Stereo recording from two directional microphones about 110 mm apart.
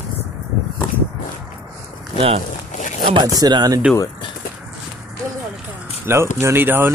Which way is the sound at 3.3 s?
40° right (ahead or behind).